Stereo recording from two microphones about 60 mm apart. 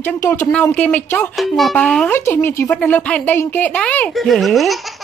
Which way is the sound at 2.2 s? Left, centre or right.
Left.